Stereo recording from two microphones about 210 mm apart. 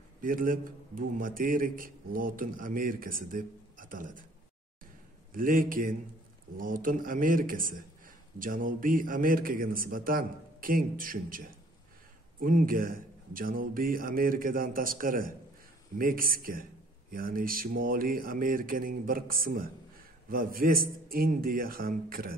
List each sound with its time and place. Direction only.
0.2 s a man's voice: 40° right (ahead or behind)
5.3 s a man's voice: 40° right (ahead or behind)